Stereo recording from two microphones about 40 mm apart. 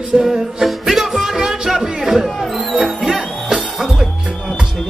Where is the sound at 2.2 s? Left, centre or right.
Centre.